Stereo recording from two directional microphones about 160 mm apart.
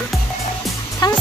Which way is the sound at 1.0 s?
25° left (ahead or behind).